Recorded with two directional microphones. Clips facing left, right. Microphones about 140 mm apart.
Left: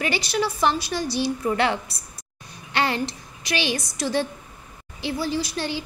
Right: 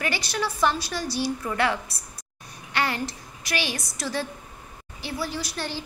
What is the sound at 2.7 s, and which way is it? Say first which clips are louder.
Babbling: left 3 dB; 25° left (ahead or behind).